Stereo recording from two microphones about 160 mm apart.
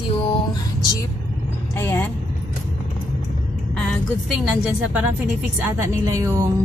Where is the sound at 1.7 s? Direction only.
15° left (ahead or behind).